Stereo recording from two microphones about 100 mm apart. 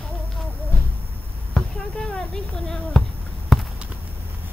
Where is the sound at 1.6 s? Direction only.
10° left (ahead or behind).